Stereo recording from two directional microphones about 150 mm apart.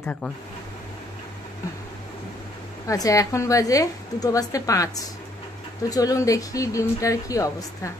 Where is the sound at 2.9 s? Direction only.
20° left (ahead or behind).